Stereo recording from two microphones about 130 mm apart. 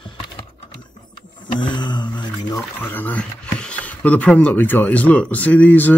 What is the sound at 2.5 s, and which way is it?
Speech, 15° left (ahead or behind).